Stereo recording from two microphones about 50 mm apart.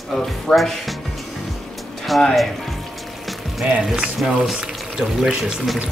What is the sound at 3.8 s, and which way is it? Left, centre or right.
Speech, centre.